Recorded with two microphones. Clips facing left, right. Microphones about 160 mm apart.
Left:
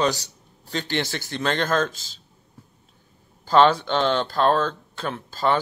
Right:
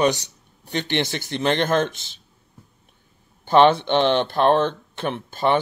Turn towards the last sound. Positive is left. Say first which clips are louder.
# right 2 dB
turn(degrees=-20)  # may be behind; listen again after turning